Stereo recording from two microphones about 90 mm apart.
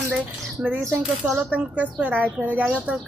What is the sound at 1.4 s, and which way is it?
Speech, 15° right (ahead or behind).